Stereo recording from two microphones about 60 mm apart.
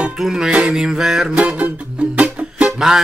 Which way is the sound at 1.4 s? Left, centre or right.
Right.